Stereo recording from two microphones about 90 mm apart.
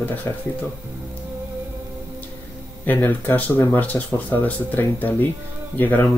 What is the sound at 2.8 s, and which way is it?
Speech, 20° left (ahead or behind).